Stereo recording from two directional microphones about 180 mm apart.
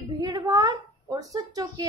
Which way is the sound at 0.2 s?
20° right (ahead or behind).